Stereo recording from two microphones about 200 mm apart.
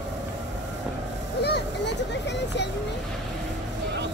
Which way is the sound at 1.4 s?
55° left (ahead or behind).